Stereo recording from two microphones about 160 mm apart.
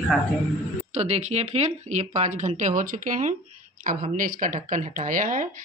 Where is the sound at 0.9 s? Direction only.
45° right (ahead or behind).